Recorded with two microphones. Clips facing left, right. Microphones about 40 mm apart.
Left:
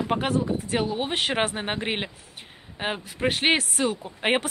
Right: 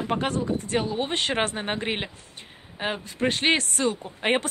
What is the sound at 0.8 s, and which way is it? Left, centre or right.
Speech, centre.